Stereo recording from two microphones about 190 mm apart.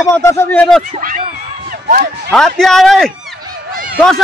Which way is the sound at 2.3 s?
Centre (ahead or behind).